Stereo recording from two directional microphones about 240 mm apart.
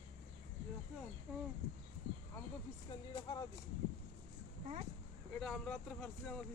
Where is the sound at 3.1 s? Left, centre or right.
Centre.